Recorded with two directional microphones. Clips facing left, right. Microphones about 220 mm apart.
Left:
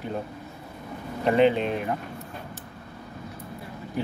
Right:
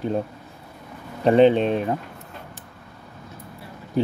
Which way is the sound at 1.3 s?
30° right (ahead or behind).